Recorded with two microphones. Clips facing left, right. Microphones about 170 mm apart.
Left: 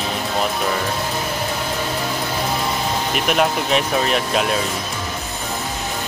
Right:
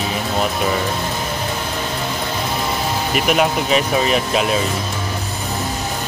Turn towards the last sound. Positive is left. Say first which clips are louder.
# right 2 dB
turn(degrees=0)  # may be behind; listen again after turning